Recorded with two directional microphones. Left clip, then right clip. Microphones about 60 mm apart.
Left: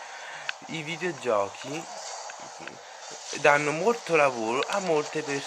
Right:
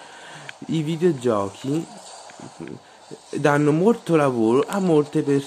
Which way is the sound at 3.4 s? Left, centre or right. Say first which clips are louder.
Right 4 dB; right.